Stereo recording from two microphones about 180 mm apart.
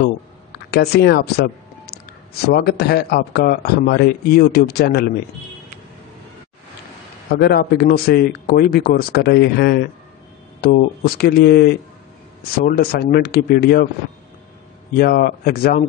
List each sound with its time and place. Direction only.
0.7 s speech: 65° left (ahead or behind)
7.2 s speech: 60° left (ahead or behind)
15.0 s speech: 55° left (ahead or behind)